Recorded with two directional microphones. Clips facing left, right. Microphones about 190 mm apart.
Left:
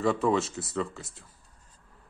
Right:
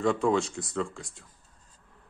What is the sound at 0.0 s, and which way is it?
Speech, centre (ahead or behind).